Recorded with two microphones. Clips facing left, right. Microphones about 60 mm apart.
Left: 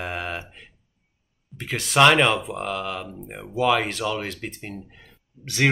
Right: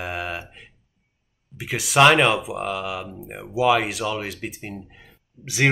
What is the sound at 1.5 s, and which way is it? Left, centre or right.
Speech, centre.